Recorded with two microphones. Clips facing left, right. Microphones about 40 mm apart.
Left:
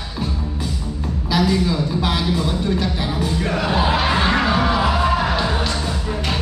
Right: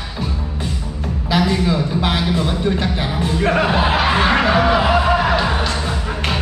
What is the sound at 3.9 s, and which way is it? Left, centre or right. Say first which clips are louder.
Music: right 3 dB; centre.